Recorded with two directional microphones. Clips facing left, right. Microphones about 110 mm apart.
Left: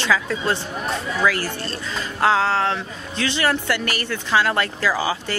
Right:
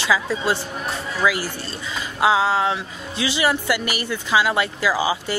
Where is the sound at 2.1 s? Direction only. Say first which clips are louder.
Right 1 dB; 10° right (ahead or behind).